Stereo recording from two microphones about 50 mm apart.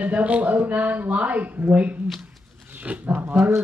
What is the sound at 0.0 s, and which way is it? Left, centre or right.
Speech, right.